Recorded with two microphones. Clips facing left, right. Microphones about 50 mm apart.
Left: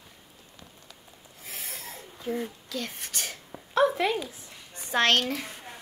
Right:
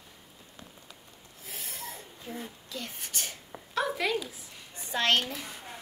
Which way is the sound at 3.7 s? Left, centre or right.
Left.